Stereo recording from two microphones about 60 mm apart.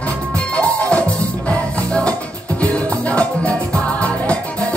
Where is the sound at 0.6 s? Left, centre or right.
Left.